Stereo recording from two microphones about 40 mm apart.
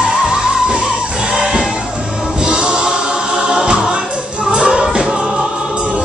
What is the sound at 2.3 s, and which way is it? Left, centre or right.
Music, right.